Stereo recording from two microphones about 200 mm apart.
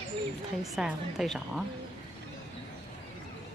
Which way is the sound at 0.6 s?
Centre (ahead or behind).